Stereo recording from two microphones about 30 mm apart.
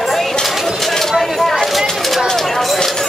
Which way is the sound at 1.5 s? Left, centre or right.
Centre.